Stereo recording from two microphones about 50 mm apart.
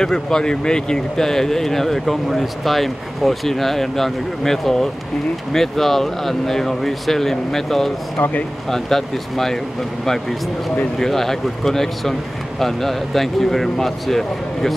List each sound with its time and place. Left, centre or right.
0.0 s speech: centre
8.2 s speech: left
8.6 s speech: centre
11.0 s speech: centre